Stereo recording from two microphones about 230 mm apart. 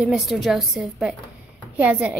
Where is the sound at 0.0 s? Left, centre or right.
Centre.